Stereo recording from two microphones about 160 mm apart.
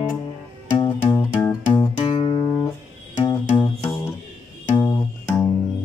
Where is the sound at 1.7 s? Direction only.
30° left (ahead or behind).